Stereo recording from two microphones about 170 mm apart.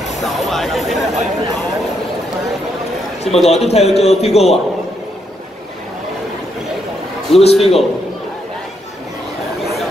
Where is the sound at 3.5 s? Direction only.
40° left (ahead or behind).